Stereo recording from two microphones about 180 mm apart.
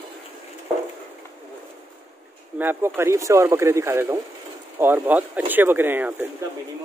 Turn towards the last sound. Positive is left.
turn(degrees=-10)  # may be behind; listen again after turning